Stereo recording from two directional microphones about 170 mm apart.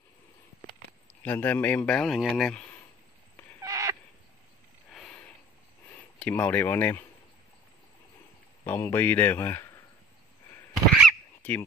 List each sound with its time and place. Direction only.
1.2 s a man's voice: 10° left (ahead or behind)
3.6 s owl: 20° right (ahead or behind)
4.9 s a sound: centre (ahead or behind)
6.1 s a man's voice: 10° left (ahead or behind)
8.6 s a man's voice: 15° left (ahead or behind)
11.1 s honk: 10° left (ahead or behind)